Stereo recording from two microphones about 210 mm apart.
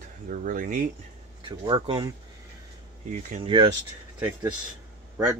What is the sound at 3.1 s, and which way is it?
Speech, 35° right (ahead or behind).